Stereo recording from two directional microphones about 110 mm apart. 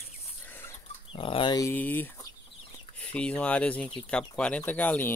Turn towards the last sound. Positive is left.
turn(degrees=15)  # may be behind; listen again after turning